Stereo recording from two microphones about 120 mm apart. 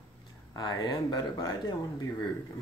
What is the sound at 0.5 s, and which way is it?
Speech, 35° left (ahead or behind).